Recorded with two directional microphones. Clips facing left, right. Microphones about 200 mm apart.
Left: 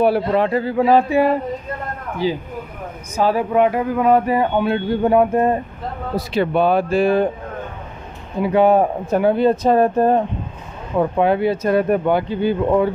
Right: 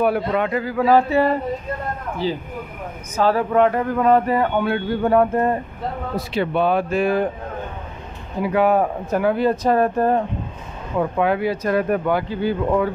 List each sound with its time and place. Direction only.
0.0 s speech: 30° left (ahead or behind)
6.1 s speech: 40° left (ahead or behind)
8.4 s speech: 25° left (ahead or behind)